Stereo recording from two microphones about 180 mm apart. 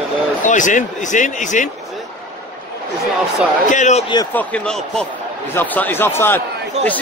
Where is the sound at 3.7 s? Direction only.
40° left (ahead or behind).